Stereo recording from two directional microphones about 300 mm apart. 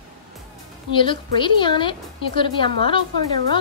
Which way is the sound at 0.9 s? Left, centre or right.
Centre.